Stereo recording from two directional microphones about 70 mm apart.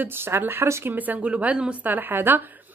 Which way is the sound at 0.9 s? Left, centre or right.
Right.